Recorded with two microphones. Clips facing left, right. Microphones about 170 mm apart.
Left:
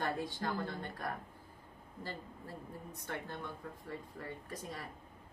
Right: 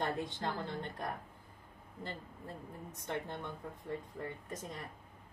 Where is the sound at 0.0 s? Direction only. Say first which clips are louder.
Right 1 dB; 25° right (ahead or behind).